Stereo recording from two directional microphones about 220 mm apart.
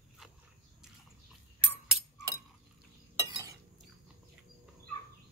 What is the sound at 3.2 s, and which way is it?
Chink, 20° right (ahead or behind).